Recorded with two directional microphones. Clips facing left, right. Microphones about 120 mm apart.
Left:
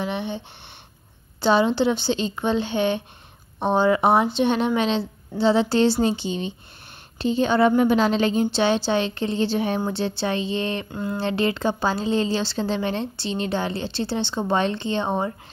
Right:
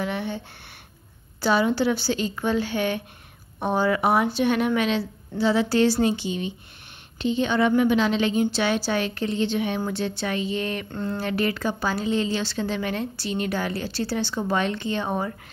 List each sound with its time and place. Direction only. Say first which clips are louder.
0.0 s speech: left 1 dB; 20° left (ahead or behind)
1.4 s a woman's voice: left 2 dB; 25° left (ahead or behind)
10.9 s a sound: left 1 dB; 10° left (ahead or behind)
11.1 s a woman's voice: left 3 dB; 25° left (ahead or behind)